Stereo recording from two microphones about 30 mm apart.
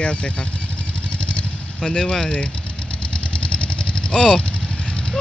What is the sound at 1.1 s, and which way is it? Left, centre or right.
Vehicle, left.